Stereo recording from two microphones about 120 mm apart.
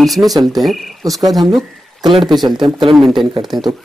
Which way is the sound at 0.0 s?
Centre (ahead or behind).